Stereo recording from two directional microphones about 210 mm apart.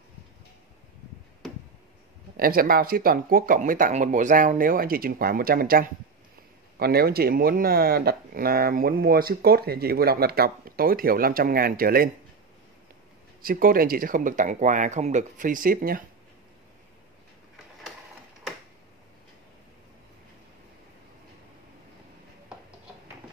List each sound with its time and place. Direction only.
2.3 s speech: 45° right (ahead or behind)
13.4 s speech: 45° right (ahead or behind)